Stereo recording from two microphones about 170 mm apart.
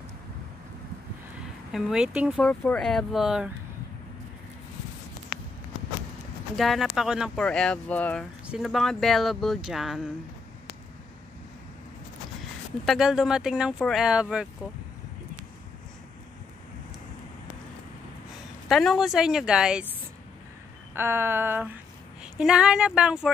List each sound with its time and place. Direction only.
1.7 s speech: 5° right (ahead or behind)
6.5 s speech: centre (ahead or behind)
8.5 s speech: centre (ahead or behind)
12.8 s speech: centre (ahead or behind)
18.7 s speech: centre (ahead or behind)
20.9 s a sound: 15° right (ahead or behind)
22.2 s speech: 5° right (ahead or behind)